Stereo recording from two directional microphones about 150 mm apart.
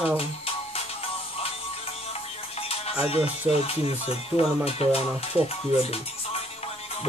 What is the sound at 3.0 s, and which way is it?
Speech, 40° left (ahead or behind).